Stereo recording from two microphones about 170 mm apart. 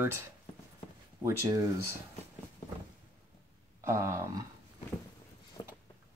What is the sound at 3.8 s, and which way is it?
Speech, 15° right (ahead or behind).